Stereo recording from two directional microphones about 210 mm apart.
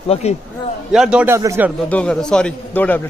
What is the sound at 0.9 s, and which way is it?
Speech, 5° right (ahead or behind).